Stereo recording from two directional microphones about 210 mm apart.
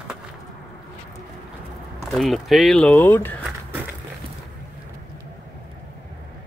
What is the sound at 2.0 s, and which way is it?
Speech, centre (ahead or behind).